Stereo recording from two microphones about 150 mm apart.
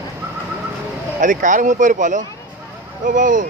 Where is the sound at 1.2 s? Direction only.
60° right (ahead or behind).